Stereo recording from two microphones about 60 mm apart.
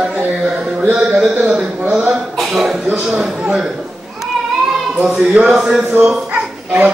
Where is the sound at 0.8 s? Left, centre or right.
Centre.